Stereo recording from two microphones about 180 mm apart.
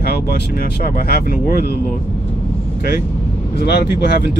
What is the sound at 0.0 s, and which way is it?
Speech, 60° left (ahead or behind).